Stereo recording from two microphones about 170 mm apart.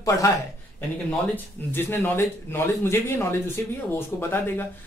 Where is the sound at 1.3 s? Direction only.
15° left (ahead or behind).